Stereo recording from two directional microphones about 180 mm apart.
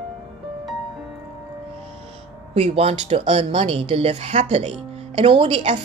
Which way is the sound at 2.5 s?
35° right (ahead or behind).